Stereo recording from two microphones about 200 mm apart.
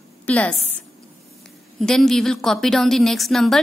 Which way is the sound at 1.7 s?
Centre (ahead or behind).